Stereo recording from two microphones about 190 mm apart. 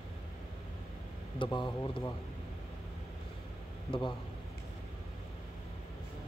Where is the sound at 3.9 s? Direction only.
25° left (ahead or behind).